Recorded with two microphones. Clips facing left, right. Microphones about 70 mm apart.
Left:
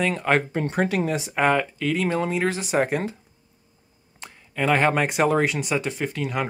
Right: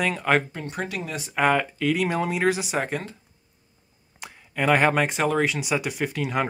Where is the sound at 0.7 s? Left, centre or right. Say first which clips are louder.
Left 8 dB; left.